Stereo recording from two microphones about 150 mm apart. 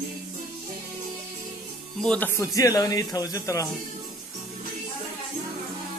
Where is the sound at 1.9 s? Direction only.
10° left (ahead or behind).